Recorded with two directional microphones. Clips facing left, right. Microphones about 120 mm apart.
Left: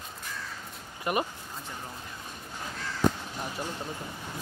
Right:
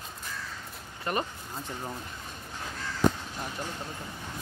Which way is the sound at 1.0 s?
10° left (ahead or behind).